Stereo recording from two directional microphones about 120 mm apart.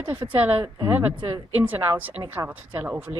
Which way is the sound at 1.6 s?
15° right (ahead or behind).